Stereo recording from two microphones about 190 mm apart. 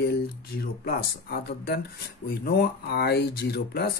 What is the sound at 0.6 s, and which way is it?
Speech, 55° left (ahead or behind).